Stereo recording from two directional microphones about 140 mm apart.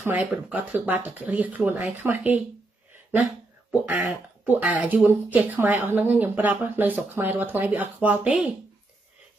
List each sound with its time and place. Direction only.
0.0 s speech: 10° right (ahead or behind)
3.8 s speech: 15° right (ahead or behind)